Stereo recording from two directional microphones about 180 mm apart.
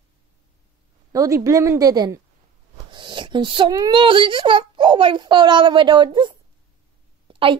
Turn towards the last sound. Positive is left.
turn(degrees=-30)  # may be behind; listen again after turning